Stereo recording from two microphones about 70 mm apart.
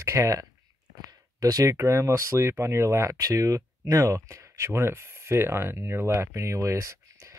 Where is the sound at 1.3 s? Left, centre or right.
Right.